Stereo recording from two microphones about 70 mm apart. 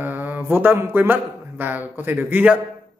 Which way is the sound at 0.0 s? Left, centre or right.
Right.